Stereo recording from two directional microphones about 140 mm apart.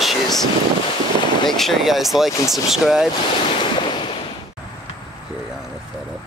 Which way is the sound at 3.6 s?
35° left (ahead or behind).